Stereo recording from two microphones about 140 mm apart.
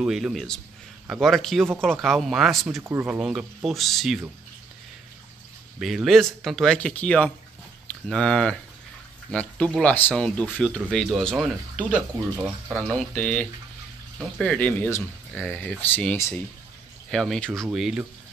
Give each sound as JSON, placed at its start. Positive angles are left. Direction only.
{"t": 0.0, "sound": "speech", "side_deg": -5}
{"t": 2.8, "sound": "speech", "side_deg": -20}
{"t": 3.1, "sound": "speech", "side_deg": -5}
{"t": 5.8, "sound": "speech", "side_deg": 0}
{"t": 12.2, "sound": "speech", "side_deg": -15}
{"t": 12.8, "sound": "speech", "side_deg": 10}